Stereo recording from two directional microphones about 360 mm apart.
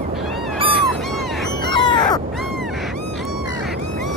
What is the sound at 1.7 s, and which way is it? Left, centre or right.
Crow, centre.